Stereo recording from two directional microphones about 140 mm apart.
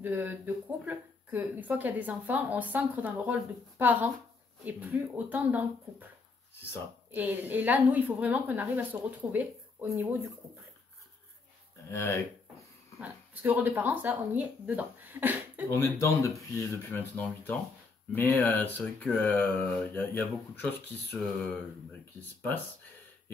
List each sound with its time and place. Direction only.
0.0 s speech: 15° right (ahead or behind)
7.1 s speech: 10° right (ahead or behind)
11.9 s speech: 20° left (ahead or behind)
13.0 s speech: 10° right (ahead or behind)
15.7 s speech: 20° left (ahead or behind)